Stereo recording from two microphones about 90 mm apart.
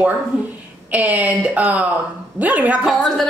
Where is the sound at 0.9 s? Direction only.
15° right (ahead or behind).